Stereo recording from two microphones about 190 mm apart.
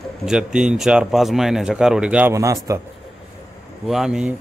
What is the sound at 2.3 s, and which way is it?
Speech, 15° right (ahead or behind).